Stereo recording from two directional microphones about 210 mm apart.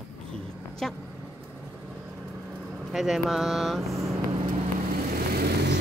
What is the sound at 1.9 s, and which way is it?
Vehicle, 5° right (ahead or behind).